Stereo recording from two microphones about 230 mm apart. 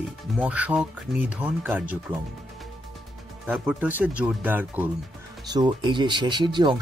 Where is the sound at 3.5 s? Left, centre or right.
Centre.